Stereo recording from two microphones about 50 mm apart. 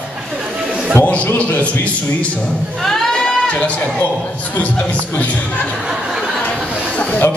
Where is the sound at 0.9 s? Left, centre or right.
Left.